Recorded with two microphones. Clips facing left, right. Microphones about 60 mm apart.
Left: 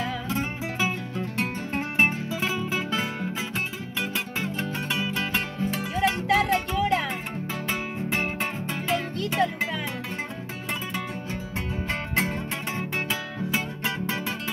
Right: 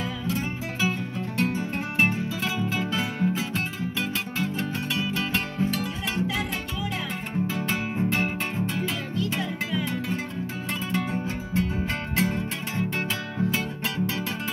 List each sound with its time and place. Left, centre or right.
0.7 s music: left
6.3 s music: left
8.1 s music: centre
12.2 s music: left